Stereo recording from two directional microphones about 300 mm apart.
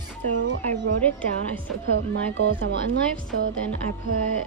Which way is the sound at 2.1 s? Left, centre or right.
Right.